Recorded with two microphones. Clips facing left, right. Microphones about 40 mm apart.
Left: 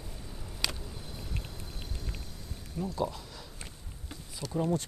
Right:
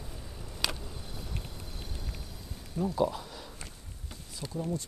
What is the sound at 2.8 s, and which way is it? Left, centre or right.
Speech, centre.